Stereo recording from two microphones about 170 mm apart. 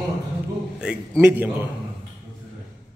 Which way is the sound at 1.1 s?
10° right (ahead or behind).